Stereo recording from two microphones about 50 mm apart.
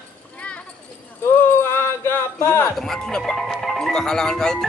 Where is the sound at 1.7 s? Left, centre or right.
Left.